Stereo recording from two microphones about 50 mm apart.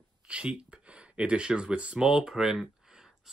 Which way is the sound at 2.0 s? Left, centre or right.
Centre.